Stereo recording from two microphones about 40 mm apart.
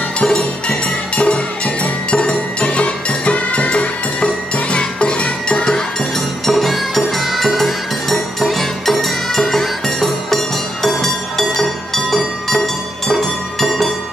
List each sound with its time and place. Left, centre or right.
1.1 s music: left
6.4 s music: centre